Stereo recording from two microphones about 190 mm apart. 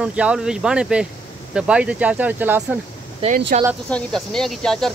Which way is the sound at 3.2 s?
30° right (ahead or behind).